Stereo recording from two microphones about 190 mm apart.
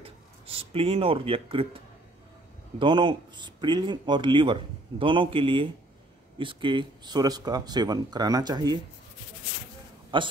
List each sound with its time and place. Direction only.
0.0 s speech: 30° right (ahead or behind)
2.8 s speech: 25° right (ahead or behind)
10.1 s speech: 25° right (ahead or behind)